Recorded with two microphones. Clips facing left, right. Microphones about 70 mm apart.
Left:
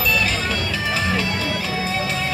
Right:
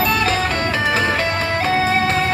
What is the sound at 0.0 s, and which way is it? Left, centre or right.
Music, right.